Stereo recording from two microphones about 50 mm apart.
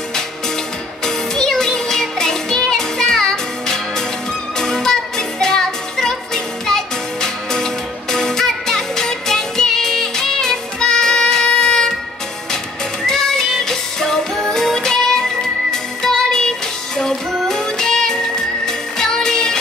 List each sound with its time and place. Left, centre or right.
1.0 s music: centre
13.0 s music: centre